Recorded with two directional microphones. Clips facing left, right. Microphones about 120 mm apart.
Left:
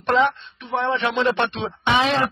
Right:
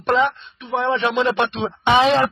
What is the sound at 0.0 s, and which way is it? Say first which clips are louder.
Speech: right 1 dB; centre (ahead or behind).